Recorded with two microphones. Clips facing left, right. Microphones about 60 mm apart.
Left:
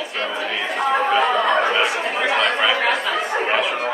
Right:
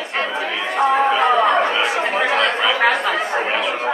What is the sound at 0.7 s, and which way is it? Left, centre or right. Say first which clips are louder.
Speech: right 3 dB; centre.